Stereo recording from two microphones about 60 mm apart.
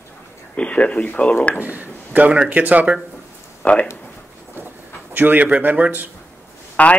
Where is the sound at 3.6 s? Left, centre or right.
Left.